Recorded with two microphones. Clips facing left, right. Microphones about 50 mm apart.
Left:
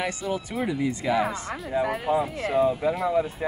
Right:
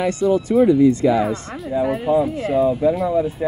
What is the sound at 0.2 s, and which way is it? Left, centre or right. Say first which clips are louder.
Speech: right 13 dB; centre.